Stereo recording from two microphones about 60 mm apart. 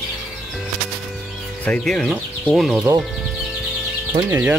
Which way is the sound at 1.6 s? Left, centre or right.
Centre.